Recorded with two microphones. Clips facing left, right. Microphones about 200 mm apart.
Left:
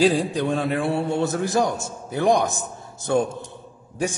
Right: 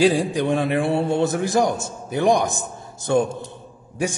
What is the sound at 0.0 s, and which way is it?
A man's voice, 10° right (ahead or behind).